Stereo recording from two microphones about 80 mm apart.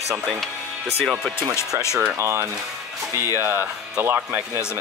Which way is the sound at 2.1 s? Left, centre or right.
Right.